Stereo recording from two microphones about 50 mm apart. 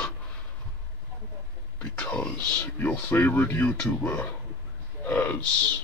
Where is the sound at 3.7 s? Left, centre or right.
Left.